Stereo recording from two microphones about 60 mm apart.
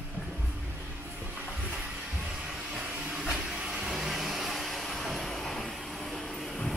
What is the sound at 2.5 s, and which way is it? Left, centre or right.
Vacuum cleaner, centre.